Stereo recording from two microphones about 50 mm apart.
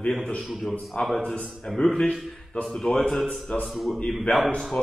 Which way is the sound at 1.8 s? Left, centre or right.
Centre.